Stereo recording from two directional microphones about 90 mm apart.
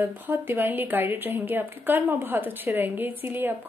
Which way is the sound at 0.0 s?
25° right (ahead or behind).